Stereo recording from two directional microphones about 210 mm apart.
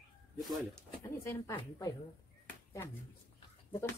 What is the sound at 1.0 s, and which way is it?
Speech, 15° left (ahead or behind).